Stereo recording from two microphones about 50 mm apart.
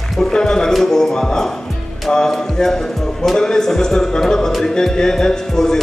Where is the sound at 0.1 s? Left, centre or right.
Centre.